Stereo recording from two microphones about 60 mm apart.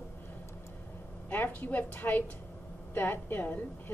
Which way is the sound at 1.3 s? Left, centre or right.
Left.